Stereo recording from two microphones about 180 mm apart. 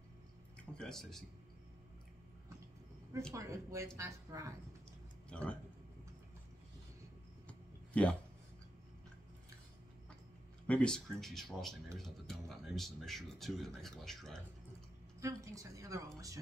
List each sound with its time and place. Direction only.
0.7 s speech: 5° left (ahead or behind)
3.3 s a woman's voice: 15° right (ahead or behind)
5.3 s speech: 5° left (ahead or behind)
7.4 s a sound: 5° left (ahead or behind)
10.7 s speech: 5° left (ahead or behind)
15.1 s a woman's voice: 15° right (ahead or behind)